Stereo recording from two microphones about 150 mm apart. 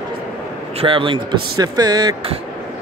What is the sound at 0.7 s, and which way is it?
A man's voice, 35° right (ahead or behind).